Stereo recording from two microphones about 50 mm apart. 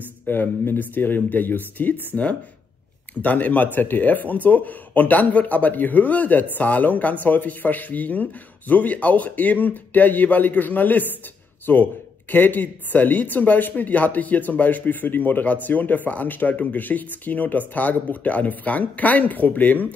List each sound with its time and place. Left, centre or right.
0.3 s speech: left
3.2 s speech: left